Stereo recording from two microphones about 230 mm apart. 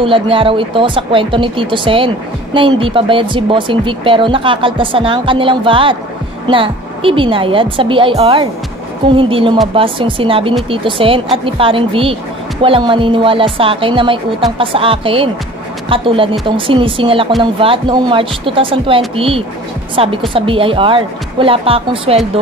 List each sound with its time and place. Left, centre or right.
0.0 s speech: right